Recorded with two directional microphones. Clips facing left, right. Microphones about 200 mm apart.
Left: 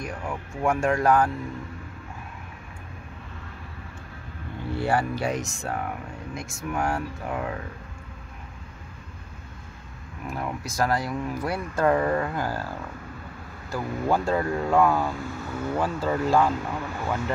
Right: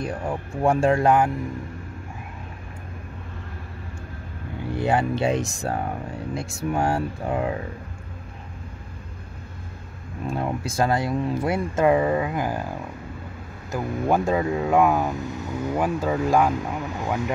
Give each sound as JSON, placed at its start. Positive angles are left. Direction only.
{"t": 0.0, "sound": "speech", "side_deg": -35}
{"t": 4.7, "sound": "speech", "side_deg": -20}
{"t": 10.2, "sound": "speech", "side_deg": -25}
{"t": 11.8, "sound": "speech", "side_deg": -15}